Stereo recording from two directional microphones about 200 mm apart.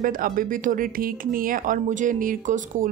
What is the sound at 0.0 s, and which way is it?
Speech, 45° right (ahead or behind).